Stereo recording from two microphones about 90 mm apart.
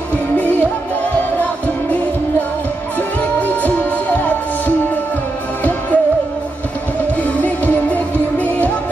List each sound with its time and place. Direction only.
0.4 s music: 20° left (ahead or behind)
3.3 s music: 20° left (ahead or behind)
7.4 s music: 20° left (ahead or behind)